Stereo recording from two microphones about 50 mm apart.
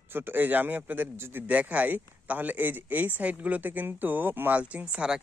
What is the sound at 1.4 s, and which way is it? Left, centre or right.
Speech, right.